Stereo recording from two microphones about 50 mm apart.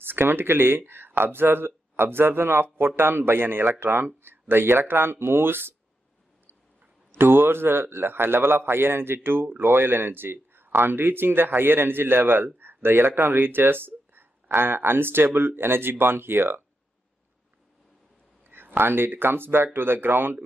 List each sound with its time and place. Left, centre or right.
0.0 s a man's voice: right
7.1 s a man's voice: right
18.5 s a man's voice: right